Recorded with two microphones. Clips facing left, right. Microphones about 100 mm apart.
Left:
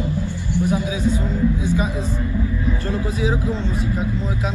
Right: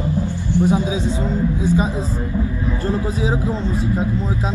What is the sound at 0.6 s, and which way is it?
Music, 25° right (ahead or behind).